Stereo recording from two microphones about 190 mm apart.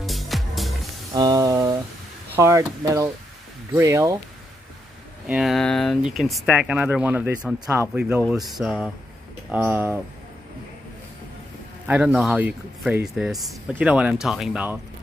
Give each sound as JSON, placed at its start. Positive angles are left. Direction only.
{"t": 0.0, "sound": "music", "side_deg": 0}
{"t": 1.1, "sound": "a sound", "side_deg": -20}
{"t": 2.3, "sound": "speech", "side_deg": -15}
{"t": 5.3, "sound": "speech", "side_deg": 0}
{"t": 11.9, "sound": "speech", "side_deg": -5}